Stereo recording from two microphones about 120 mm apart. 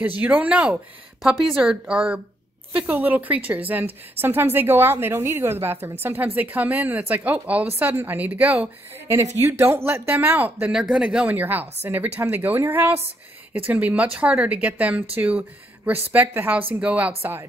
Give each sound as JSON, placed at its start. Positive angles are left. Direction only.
{"t": 0.2, "sound": "a woman's voice", "side_deg": -15}